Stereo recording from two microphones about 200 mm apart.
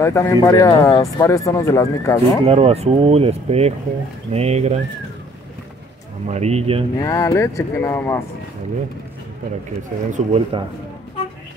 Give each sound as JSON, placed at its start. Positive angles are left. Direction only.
{"t": 0.0, "sound": "speech", "side_deg": 15}
{"t": 2.4, "sound": "speech", "side_deg": -30}
{"t": 6.2, "sound": "speech", "side_deg": -35}
{"t": 7.0, "sound": "speech", "side_deg": 15}
{"t": 10.1, "sound": "speech", "side_deg": -30}